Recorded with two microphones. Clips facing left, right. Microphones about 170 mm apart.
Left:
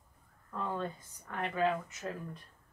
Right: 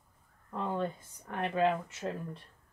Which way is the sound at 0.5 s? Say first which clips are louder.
Right 3 dB; 20° right (ahead or behind).